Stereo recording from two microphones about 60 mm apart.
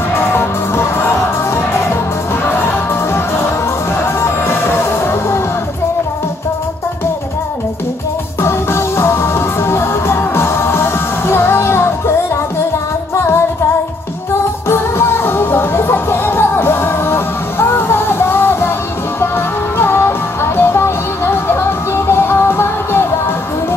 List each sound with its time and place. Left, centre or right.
0.1 s music: left
4.2 s music: left
8.4 s music: left
14.7 s music: left